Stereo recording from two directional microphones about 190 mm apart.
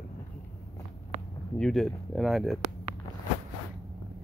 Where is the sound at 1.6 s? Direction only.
Centre (ahead or behind).